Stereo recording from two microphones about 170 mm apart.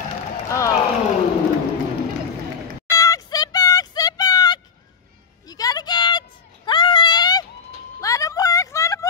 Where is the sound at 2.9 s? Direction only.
20° left (ahead or behind).